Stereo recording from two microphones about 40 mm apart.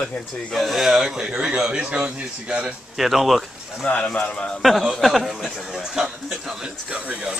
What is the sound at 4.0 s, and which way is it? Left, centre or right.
Speech, left.